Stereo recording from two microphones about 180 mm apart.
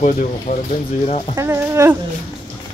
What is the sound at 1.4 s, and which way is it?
Speech, 15° right (ahead or behind).